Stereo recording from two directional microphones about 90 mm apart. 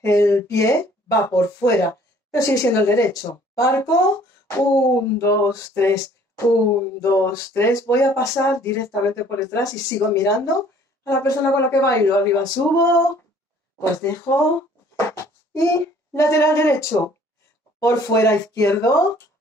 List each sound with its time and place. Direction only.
0.0 s a woman's voice: 30° left (ahead or behind)
13.7 s a child's voice: 30° left (ahead or behind)